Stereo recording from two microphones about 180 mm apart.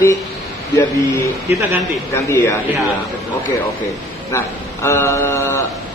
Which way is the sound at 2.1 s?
15° left (ahead or behind).